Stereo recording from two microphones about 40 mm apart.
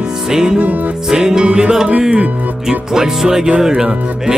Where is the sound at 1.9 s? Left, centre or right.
Right.